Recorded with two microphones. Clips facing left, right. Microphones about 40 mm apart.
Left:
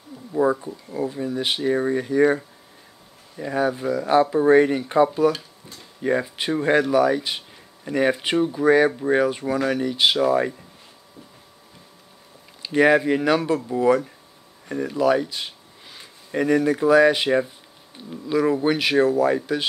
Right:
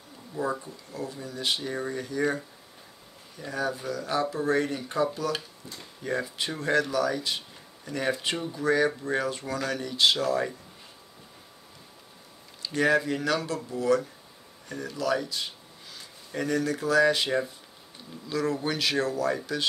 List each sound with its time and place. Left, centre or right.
0.3 s speech: left
12.6 s speech: left